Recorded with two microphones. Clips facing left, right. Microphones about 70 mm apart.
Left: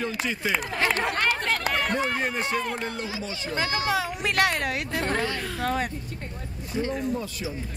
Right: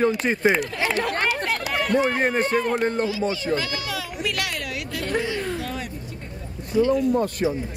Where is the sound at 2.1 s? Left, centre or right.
Right.